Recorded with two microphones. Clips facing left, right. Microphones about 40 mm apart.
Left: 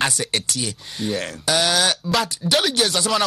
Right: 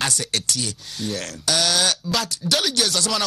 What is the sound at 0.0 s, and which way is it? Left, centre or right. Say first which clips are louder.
Speech: left 3 dB; centre.